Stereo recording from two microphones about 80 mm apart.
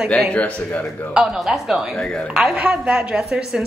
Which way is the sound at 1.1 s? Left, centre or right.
Centre.